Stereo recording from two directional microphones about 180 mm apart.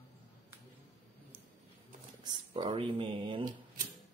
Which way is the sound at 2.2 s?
25° right (ahead or behind).